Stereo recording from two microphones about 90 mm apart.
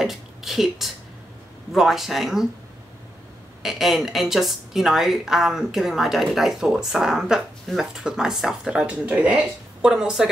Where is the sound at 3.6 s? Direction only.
5° right (ahead or behind).